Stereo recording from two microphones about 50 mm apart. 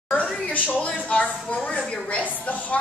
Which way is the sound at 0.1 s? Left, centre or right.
Left.